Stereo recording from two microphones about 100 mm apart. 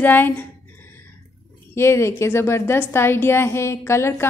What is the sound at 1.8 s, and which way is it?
A woman's voice, 25° left (ahead or behind).